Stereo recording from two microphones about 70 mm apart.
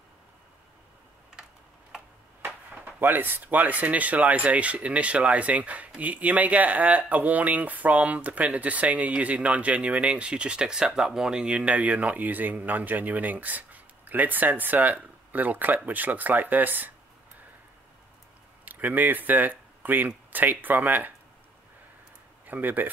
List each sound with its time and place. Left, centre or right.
2.4 s speech: right
18.7 s speech: right
22.5 s speech: right